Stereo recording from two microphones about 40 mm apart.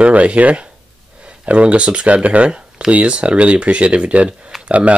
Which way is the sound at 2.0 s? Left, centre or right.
Right.